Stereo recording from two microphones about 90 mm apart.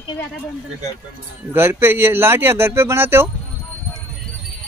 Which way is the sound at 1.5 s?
25° right (ahead or behind).